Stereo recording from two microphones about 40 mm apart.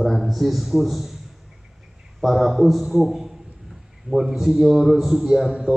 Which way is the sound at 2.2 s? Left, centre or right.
Centre.